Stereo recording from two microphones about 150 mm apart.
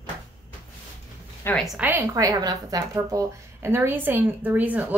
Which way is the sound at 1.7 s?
15° right (ahead or behind).